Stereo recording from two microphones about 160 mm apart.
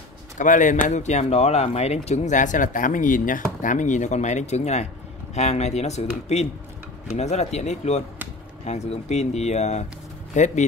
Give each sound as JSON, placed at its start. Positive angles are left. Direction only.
{"t": 0.4, "sound": "speech", "side_deg": 55}